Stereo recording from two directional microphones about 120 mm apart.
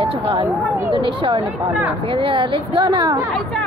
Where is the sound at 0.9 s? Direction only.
45° right (ahead or behind).